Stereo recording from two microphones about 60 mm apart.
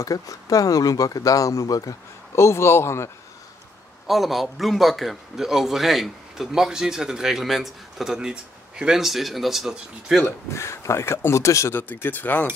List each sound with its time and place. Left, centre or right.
0.0 s speech: left
2.3 s speech: left
4.1 s a man's voice: centre
10.5 s speech: left
11.7 s speech: left